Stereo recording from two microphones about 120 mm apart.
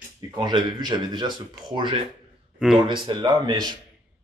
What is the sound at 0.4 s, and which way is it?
Speech, 40° right (ahead or behind).